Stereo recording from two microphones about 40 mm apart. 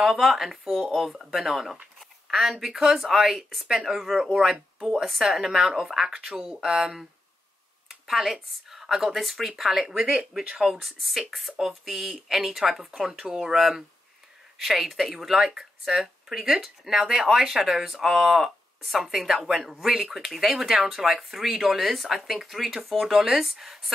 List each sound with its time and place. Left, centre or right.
0.0 s speech: centre
2.2 s a sound: centre
2.7 s speech: centre
7.9 s speech: centre
10.8 s speech: centre
13.6 s speech: centre